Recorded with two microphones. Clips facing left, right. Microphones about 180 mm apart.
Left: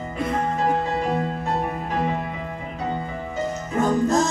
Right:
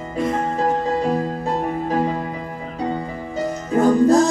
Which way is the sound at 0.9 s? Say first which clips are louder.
Right 3 dB; 35° right (ahead or behind).